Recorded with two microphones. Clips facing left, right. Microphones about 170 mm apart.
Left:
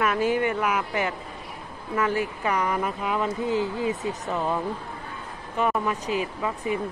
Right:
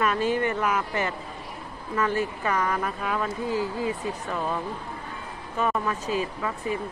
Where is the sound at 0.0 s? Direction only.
10° left (ahead or behind).